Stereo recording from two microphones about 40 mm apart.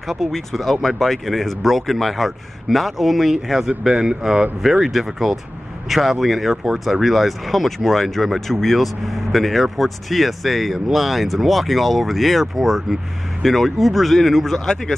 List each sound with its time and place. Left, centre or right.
0.1 s speech: centre
3.6 s speech: centre